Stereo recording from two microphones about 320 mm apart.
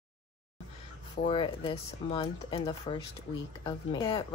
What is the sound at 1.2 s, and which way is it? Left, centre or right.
Speech, centre.